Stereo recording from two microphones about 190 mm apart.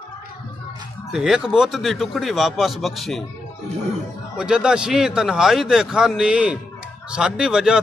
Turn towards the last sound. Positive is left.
turn(degrees=-5)  # may be behind; listen again after turning